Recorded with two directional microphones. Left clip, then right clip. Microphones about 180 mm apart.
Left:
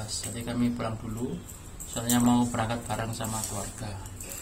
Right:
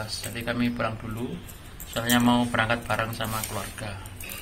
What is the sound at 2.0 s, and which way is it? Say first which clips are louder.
A man's voice: right 3 dB; 5° right (ahead or behind).